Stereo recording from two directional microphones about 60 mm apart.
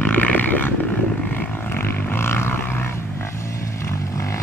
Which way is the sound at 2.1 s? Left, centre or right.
Left.